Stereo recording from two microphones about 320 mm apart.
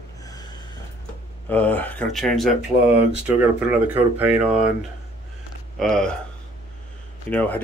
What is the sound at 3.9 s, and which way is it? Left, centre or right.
Speech, centre.